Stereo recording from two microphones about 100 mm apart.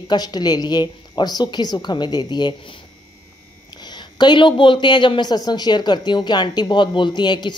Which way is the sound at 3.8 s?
45° left (ahead or behind).